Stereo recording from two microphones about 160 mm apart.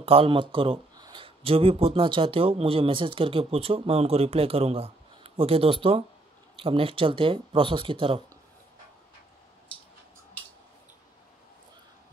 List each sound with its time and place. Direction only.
0.0 s speech: 35° right (ahead or behind)